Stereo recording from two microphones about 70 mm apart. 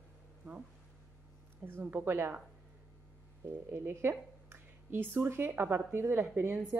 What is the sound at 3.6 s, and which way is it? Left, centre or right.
A woman's voice, right.